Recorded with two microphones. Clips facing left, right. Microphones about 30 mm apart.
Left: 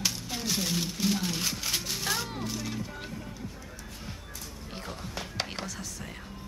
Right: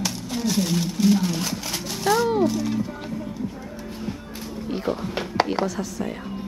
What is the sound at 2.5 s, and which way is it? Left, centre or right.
Speech, centre.